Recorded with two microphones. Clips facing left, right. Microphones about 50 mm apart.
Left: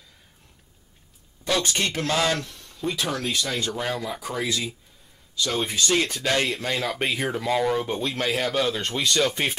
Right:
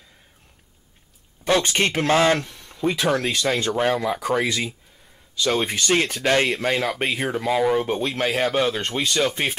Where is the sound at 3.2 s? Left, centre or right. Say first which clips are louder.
Right 4 dB; right.